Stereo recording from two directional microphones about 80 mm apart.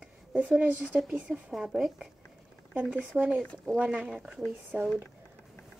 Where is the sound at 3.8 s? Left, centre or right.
Centre.